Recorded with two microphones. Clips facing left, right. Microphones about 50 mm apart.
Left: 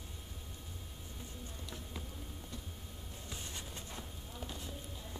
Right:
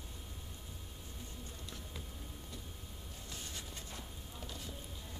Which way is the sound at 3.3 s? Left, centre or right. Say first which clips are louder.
Left 1 dB; centre.